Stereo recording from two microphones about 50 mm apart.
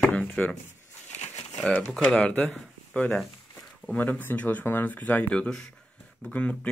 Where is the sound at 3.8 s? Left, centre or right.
Left.